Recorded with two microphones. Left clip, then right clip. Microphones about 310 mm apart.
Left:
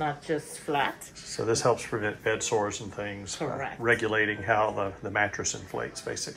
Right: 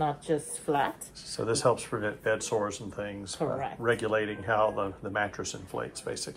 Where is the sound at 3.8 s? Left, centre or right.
Centre.